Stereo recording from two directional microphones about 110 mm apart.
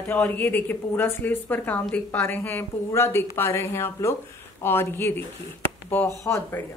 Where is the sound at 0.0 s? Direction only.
15° left (ahead or behind).